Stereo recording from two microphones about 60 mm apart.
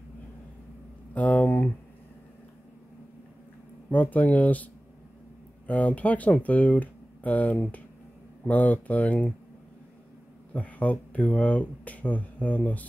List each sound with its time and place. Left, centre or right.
1.1 s speech: left
3.9 s speech: left
5.7 s speech: left
10.5 s speech: left